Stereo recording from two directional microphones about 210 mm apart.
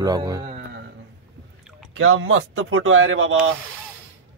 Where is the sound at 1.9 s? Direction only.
70° right (ahead or behind).